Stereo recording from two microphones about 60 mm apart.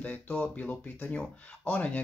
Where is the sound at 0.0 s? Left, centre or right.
Left.